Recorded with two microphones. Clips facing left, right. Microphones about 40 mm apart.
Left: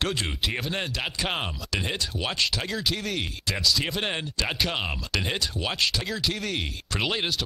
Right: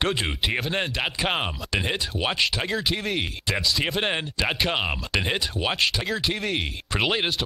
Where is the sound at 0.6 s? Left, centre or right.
Centre.